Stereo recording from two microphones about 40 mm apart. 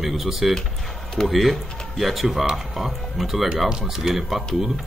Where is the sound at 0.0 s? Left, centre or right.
Centre.